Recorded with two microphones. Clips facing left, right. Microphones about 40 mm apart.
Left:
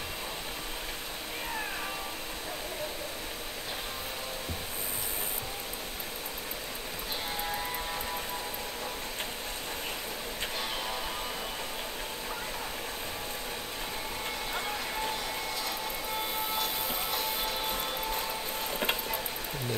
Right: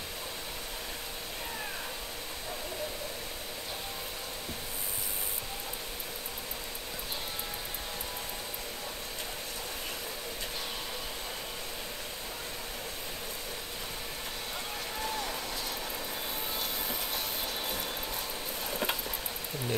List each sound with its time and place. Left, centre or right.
18.7 s vehicle: centre